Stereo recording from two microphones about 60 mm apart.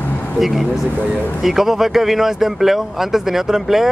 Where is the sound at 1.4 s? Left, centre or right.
Centre.